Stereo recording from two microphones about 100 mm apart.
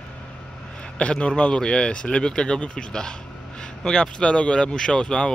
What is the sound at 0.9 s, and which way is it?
Speech, 10° left (ahead or behind).